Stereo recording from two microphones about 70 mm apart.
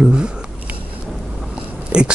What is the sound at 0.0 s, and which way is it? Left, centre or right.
Speech, centre.